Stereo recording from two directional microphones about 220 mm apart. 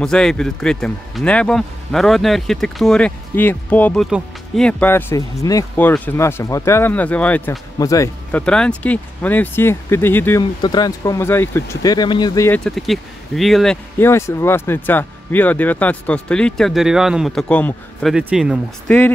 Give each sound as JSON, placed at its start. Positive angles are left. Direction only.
{"t": 0.0, "sound": "speech", "side_deg": 5}